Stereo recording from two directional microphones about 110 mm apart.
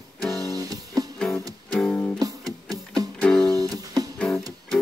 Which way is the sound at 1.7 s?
10° left (ahead or behind).